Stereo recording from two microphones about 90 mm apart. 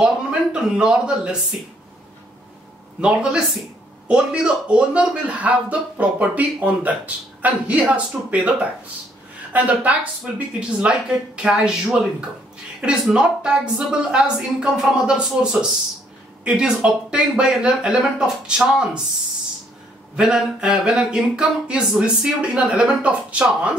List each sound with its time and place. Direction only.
0.0 s speech: 15° right (ahead or behind)
3.0 s speech: 10° right (ahead or behind)
20.2 s speech: 10° right (ahead or behind)